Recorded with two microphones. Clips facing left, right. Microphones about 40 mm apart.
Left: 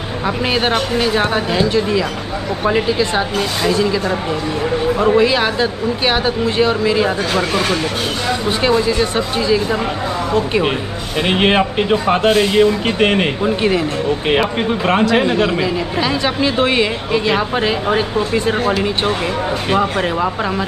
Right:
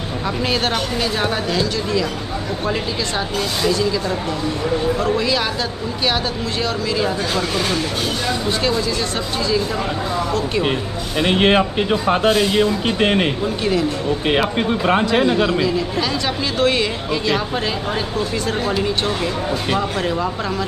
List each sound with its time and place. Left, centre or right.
0.5 s speech: left
12.8 s speech: left
13.4 s speech: left
15.4 s speech: left
19.7 s speech: left